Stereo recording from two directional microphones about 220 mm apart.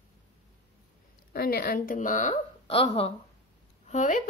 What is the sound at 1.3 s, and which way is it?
A woman's voice, 45° left (ahead or behind).